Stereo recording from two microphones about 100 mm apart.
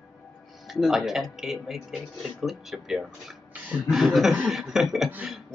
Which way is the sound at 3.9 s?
Centre (ahead or behind).